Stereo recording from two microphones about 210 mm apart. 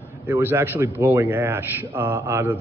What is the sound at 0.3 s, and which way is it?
A man's voice, 10° right (ahead or behind).